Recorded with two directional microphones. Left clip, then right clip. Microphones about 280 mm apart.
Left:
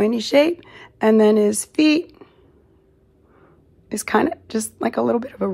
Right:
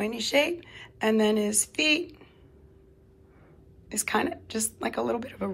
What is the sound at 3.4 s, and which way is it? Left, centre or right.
A woman's voice, centre.